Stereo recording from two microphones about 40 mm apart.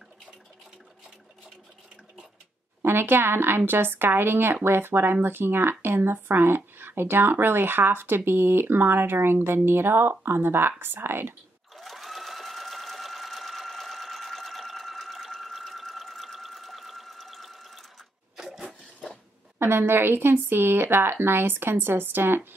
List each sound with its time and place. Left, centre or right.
2.8 s speech: right
11.7 s sewing machine: centre
18.3 s a sound: centre
19.6 s speech: right